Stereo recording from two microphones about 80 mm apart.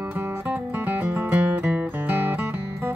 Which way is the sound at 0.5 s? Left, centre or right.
Right.